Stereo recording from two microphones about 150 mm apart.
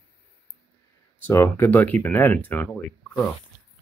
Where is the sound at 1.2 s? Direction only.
15° left (ahead or behind).